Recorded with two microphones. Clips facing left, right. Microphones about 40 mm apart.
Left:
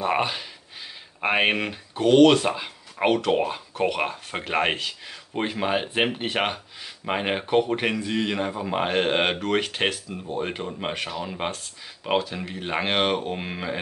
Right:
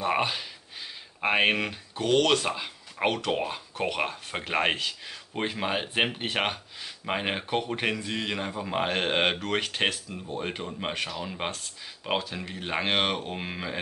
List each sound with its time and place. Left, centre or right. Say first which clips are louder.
0.0 s speech: left 2 dB; centre